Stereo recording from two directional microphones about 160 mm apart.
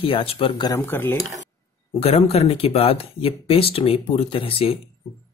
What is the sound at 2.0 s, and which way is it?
Speech, 35° left (ahead or behind).